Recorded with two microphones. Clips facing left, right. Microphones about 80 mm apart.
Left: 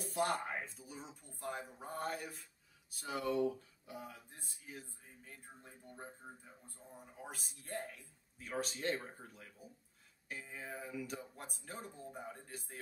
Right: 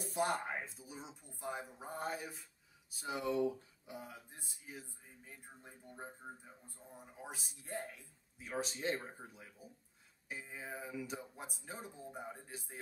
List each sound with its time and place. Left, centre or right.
0.2 s speech: centre
3.3 s speech: centre
4.0 s speech: centre
5.2 s speech: centre